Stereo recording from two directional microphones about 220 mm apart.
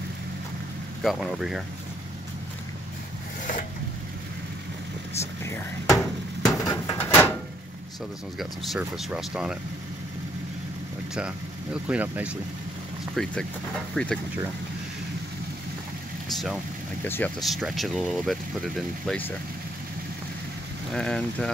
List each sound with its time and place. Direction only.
1.0 s speech: centre (ahead or behind)
5.4 s speech: 10° left (ahead or behind)
6.4 s a sound: 15° left (ahead or behind)
8.4 s speech: centre (ahead or behind)
11.9 s speech: 5° right (ahead or behind)
17.0 s speech: 5° left (ahead or behind)
20.9 s speech: 5° left (ahead or behind)